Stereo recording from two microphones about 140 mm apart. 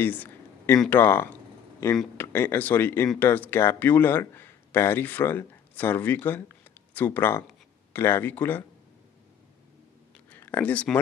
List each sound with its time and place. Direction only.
0.0 s a sound: 15° left (ahead or behind)
0.8 s a man's voice: 15° left (ahead or behind)
10.3 s speech: 15° left (ahead or behind)